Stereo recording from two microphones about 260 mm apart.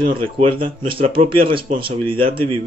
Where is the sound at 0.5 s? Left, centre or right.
Centre.